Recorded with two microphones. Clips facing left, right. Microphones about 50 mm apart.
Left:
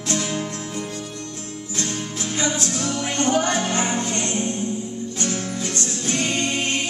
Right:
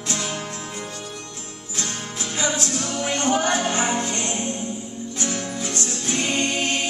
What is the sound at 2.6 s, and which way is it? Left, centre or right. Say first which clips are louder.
Music: left 1 dB; centre.